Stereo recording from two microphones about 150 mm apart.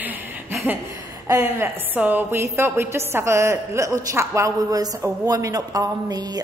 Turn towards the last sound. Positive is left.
turn(degrees=-25)  # may be behind; listen again after turning